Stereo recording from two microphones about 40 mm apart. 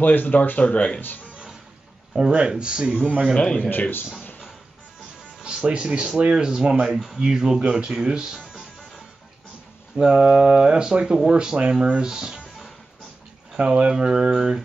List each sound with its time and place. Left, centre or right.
0.0 s speech: left
1.0 s speech: left
2.1 s speech: centre
5.4 s speech: right
9.9 s speech: centre
13.6 s speech: centre